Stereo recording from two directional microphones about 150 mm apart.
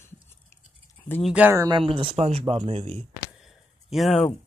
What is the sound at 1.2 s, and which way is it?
Speech, 5° right (ahead or behind).